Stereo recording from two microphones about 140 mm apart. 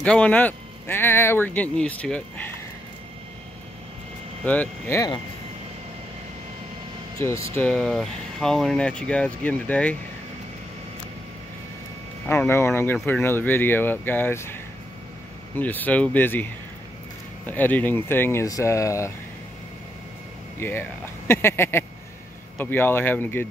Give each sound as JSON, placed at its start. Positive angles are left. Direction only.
{"t": 0.0, "sound": "speech", "side_deg": 10}
{"t": 4.5, "sound": "speech", "side_deg": 15}
{"t": 7.2, "sound": "speech", "side_deg": 20}
{"t": 7.6, "sound": "speech", "side_deg": 5}
{"t": 12.3, "sound": "speech", "side_deg": 15}
{"t": 17.5, "sound": "speech", "side_deg": 10}
{"t": 20.5, "sound": "speech", "side_deg": 15}